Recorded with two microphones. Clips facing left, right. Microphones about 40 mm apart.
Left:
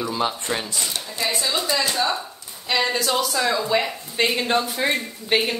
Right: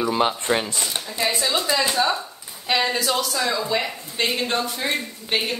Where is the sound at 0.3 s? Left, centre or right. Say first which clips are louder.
Right 4 dB; centre.